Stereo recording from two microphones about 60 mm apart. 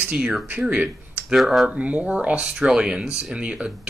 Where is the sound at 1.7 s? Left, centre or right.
Right.